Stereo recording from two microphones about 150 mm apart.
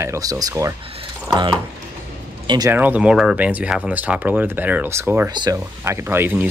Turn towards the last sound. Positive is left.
turn(degrees=-15)  # may be behind; listen again after turning